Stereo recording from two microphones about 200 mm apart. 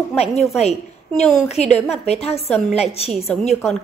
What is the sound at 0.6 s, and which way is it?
Speech, 30° left (ahead or behind).